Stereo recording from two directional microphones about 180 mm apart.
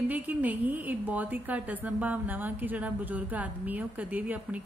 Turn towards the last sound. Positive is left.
turn(degrees=-10)  # may be behind; listen again after turning